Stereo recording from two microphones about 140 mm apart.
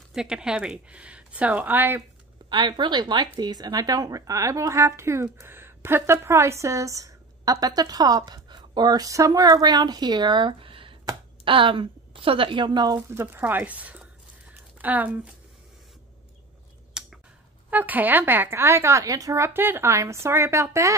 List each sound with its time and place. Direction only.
0.1 s speech: 5° right (ahead or behind)
2.5 s a woman's voice: 35° right (ahead or behind)
13.1 s speech: 15° right (ahead or behind)
14.5 s a sound: 10° right (ahead or behind)
17.0 s a sound: 5° right (ahead or behind)
17.6 s speech: 10° right (ahead or behind)